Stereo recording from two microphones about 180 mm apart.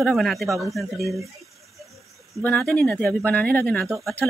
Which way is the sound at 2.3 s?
5° left (ahead or behind).